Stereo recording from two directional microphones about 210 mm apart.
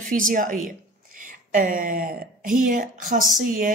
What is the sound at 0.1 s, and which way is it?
Speech, 40° right (ahead or behind).